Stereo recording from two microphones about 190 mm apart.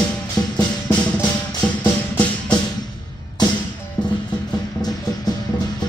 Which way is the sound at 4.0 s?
20° left (ahead or behind).